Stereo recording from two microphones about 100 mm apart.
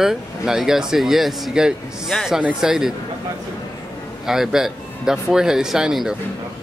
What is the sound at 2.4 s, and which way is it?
Speech, 10° right (ahead or behind).